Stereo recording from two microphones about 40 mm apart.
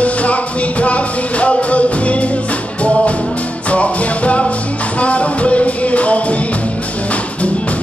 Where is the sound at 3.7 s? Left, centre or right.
Left.